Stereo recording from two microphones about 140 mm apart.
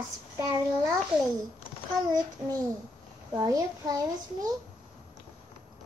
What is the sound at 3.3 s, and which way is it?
Child singing, 25° right (ahead or behind).